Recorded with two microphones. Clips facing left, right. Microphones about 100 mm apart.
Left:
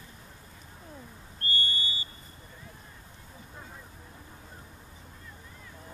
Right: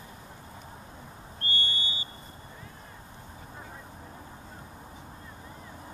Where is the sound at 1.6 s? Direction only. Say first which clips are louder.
Even; 25° right (ahead or behind).